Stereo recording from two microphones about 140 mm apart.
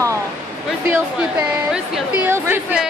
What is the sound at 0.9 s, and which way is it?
Speech, 10° right (ahead or behind).